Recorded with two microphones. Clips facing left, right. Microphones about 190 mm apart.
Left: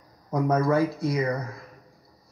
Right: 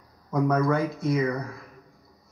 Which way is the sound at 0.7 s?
30° left (ahead or behind).